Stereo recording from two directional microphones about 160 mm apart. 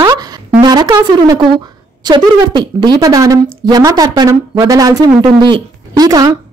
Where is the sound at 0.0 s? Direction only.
25° right (ahead or behind).